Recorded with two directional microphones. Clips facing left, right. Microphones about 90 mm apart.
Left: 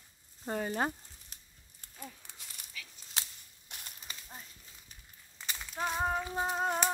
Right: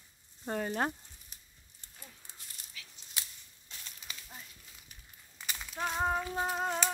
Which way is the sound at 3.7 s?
65° left (ahead or behind).